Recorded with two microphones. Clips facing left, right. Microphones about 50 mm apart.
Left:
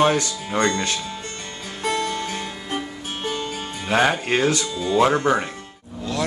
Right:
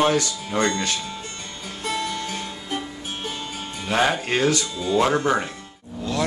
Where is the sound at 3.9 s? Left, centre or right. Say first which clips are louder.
Left 2 dB; centre.